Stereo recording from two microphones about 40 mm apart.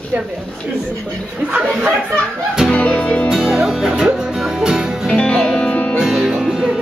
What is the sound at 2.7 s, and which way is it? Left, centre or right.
Music, left.